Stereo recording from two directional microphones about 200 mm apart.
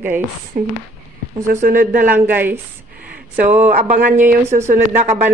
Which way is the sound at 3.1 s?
40° right (ahead or behind).